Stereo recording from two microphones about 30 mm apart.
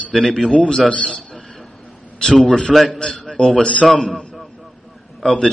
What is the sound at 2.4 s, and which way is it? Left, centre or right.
Speech, left.